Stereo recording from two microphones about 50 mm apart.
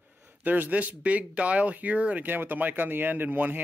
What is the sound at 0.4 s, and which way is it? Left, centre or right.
Speech, right.